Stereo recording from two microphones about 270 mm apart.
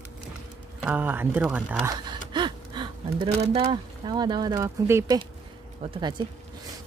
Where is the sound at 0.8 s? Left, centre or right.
Centre.